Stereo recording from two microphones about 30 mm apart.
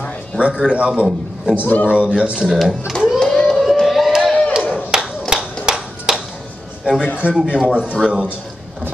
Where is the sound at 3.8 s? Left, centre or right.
Centre.